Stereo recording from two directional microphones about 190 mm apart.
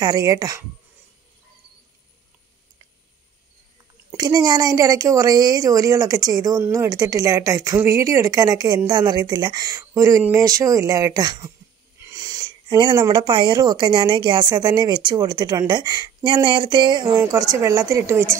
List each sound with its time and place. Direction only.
0.0 s a woman's voice: 20° right (ahead or behind)
4.1 s a woman's voice: 20° right (ahead or behind)
12.0 s sniff: 20° right (ahead or behind)
12.9 s a woman's voice: 20° right (ahead or behind)